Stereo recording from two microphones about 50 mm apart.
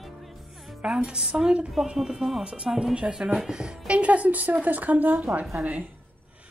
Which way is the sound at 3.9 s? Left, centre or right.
Right.